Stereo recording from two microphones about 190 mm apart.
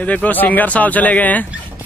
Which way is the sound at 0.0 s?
10° left (ahead or behind).